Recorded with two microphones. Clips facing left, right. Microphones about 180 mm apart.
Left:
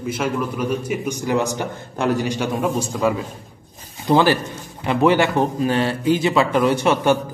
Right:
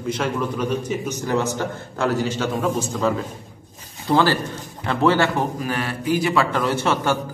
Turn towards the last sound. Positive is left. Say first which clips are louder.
# left 4 dB
turn(degrees=15)  # may be behind; listen again after turning